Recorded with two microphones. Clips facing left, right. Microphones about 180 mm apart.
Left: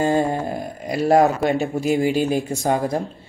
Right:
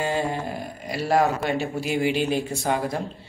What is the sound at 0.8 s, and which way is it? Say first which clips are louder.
A man's voice: left 6 dB; 45° left (ahead or behind).